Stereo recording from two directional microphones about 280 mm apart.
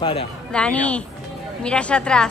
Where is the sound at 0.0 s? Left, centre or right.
Centre.